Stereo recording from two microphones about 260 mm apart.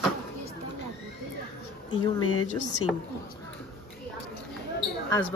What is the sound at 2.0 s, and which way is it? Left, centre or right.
Speech, left.